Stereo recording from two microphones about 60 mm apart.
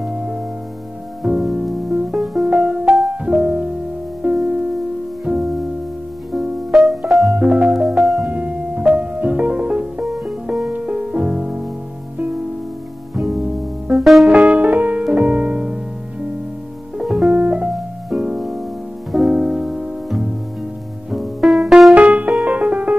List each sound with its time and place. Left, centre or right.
0.0 s music: centre
2.6 s music: centre
6.3 s music: centre
7.3 s music: centre
7.7 s music: centre
8.3 s music: right
13.1 s music: centre
14.3 s music: centre
17.3 s piano: centre
18.1 s music: centre
21.9 s music: right